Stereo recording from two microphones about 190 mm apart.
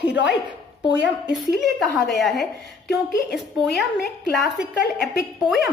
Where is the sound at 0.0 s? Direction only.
65° left (ahead or behind).